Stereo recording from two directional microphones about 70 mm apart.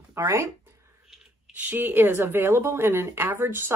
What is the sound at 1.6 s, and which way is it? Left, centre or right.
Speech, right.